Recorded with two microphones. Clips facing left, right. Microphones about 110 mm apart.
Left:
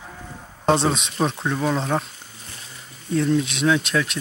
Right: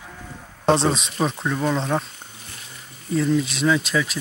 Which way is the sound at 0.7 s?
Centre (ahead or behind).